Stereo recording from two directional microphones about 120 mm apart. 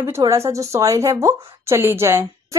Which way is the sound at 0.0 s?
25° right (ahead or behind).